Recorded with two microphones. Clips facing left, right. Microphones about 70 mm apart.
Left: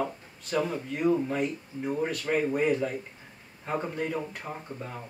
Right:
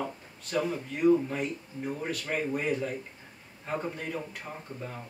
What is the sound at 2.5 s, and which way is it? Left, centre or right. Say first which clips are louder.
Speech: left 4 dB; centre.